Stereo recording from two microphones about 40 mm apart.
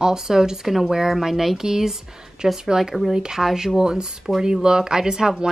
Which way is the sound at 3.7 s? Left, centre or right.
Centre.